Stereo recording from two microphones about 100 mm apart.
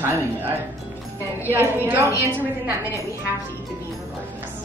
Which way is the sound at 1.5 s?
25° right (ahead or behind).